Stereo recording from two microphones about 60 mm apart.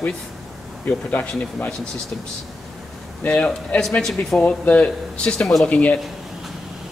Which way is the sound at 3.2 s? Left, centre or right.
Left.